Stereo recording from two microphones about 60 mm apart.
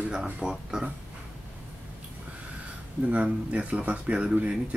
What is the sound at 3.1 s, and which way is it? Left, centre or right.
Speech, right.